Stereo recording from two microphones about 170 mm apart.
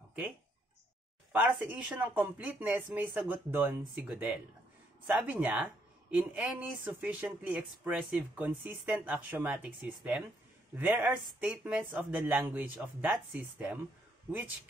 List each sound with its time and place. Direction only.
1.3 s speech: 10° right (ahead or behind)